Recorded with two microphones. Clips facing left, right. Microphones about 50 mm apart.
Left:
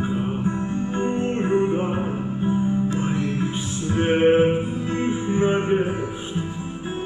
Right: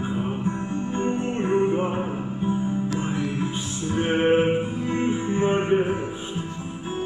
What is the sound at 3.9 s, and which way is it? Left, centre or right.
Music, centre.